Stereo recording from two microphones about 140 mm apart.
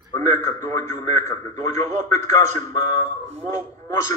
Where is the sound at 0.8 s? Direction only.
55° right (ahead or behind).